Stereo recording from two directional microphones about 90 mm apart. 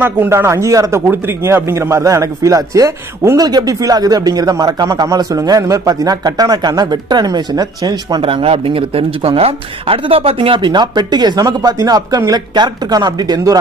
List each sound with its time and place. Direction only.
0.0 s speech: 25° right (ahead or behind)
1.0 s speech: 25° right (ahead or behind); by 8.2 s 45° right (ahead or behind)
8.2 s speech: 90° right; by 13.6 s 45° right (ahead or behind)